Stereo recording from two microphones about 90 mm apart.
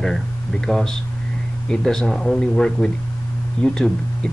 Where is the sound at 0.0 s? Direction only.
5° left (ahead or behind).